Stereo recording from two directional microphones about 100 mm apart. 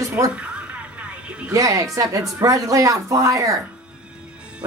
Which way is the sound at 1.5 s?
30° right (ahead or behind).